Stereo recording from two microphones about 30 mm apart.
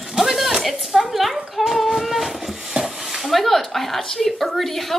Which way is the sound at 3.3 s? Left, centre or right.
Centre.